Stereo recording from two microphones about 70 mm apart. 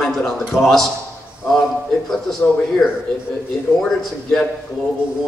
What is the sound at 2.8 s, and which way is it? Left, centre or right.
A man's voice, centre.